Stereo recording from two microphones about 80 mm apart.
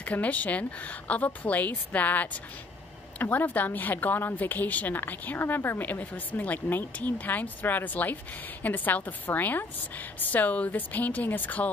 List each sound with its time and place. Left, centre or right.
0.0 s a woman's voice: centre